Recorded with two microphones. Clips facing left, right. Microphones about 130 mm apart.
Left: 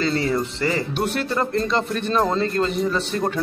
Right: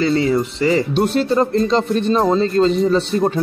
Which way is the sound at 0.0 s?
15° right (ahead or behind).